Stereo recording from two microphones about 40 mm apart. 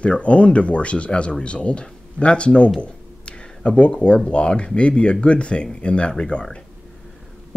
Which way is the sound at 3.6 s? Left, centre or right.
Left.